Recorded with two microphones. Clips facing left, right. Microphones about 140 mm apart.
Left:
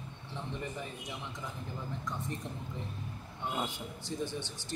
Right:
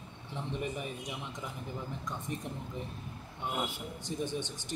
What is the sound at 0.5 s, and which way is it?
Speech, 20° right (ahead or behind).